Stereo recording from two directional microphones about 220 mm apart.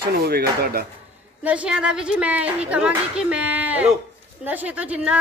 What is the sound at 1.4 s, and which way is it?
A woman's voice, 5° right (ahead or behind).